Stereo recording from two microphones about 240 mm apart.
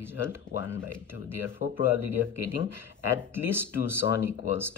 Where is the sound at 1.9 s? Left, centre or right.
Left.